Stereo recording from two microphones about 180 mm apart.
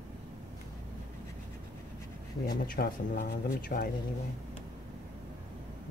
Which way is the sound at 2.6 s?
50° left (ahead or behind).